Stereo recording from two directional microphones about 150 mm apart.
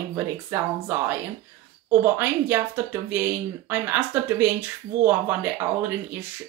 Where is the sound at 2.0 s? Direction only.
15° right (ahead or behind).